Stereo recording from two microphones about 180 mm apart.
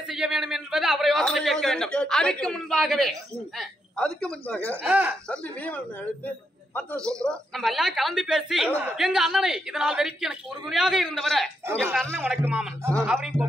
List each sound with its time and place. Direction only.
0.1 s a woman's voice: centre (ahead or behind)
4.8 s speech: 10° right (ahead or behind)
5.3 s a woman's voice: 10° left (ahead or behind)
12.1 s a woman's voice: 10° right (ahead or behind)